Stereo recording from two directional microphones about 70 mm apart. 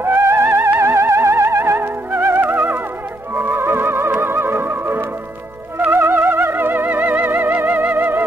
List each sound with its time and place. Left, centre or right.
0.0 s music: right